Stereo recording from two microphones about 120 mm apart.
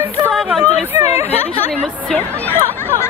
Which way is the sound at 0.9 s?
20° right (ahead or behind).